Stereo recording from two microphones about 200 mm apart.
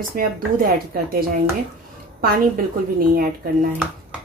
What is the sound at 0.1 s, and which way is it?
Speech, 45° right (ahead or behind).